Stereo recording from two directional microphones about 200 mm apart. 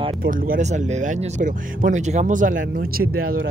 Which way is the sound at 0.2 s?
45° right (ahead or behind).